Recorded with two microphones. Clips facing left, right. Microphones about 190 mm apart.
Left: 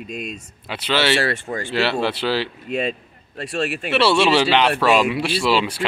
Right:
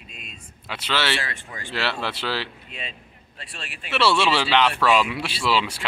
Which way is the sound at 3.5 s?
45° left (ahead or behind).